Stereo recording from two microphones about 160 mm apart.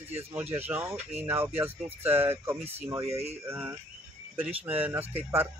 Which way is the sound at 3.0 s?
40° right (ahead or behind).